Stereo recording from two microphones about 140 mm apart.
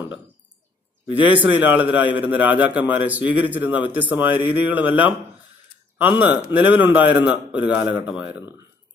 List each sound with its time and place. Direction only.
1.2 s a man's voice: 10° right (ahead or behind)